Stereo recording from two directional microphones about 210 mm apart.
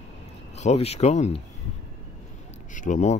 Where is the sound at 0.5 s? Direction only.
30° left (ahead or behind).